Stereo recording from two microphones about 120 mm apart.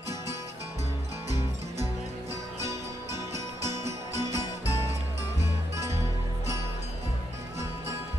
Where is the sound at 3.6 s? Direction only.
25° right (ahead or behind).